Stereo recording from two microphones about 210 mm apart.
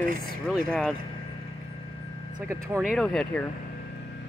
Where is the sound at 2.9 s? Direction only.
5° left (ahead or behind).